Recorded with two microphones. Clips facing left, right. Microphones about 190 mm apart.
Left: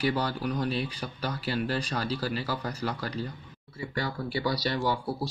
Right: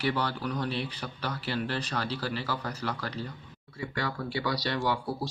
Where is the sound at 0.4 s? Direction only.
15° left (ahead or behind).